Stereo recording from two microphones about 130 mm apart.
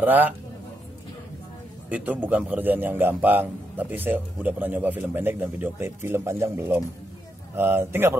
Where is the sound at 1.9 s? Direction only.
10° right (ahead or behind).